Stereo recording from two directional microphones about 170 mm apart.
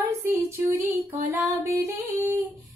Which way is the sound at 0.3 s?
15° right (ahead or behind).